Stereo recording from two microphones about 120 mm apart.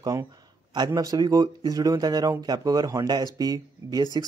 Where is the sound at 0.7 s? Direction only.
35° right (ahead or behind).